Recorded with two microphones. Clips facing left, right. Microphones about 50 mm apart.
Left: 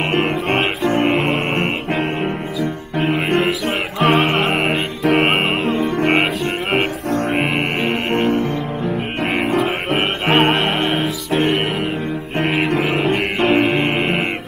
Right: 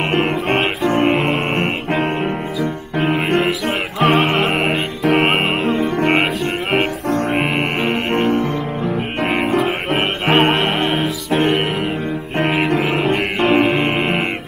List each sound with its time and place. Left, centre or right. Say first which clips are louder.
0.3 s music: right 1 dB; right
3.0 s music: right 1 dB; centre
5.8 s music: even; right
8.9 s music: right 2 dB; centre
13.5 s music: right 1 dB; centre